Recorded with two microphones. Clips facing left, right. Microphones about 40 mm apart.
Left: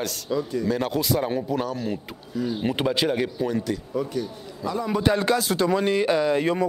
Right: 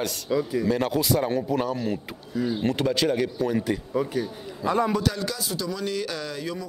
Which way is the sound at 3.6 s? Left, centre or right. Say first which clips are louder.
Right 1 dB; centre.